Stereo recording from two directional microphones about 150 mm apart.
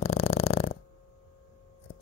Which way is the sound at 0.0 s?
40° left (ahead or behind).